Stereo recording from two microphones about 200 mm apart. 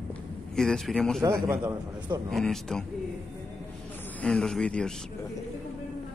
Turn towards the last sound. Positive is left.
turn(degrees=5)  # may be behind; listen again after turning